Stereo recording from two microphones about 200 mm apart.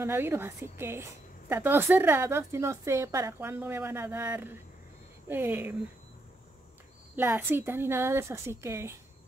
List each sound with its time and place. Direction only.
0.0 s a woman's voice: 10° right (ahead or behind)
7.2 s a woman's voice: 10° right (ahead or behind)